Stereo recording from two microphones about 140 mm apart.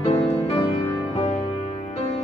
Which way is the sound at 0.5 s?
45° left (ahead or behind).